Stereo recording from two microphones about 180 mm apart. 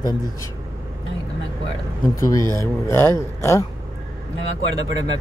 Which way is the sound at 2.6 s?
15° left (ahead or behind).